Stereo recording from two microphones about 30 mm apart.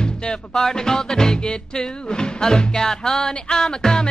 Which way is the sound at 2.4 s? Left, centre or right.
Left.